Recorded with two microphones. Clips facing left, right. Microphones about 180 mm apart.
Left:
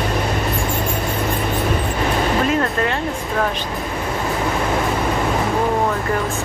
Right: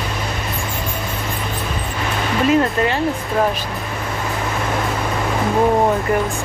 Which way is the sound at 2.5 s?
5° right (ahead or behind).